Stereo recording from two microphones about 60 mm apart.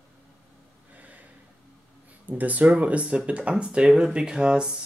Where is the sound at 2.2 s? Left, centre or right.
Right.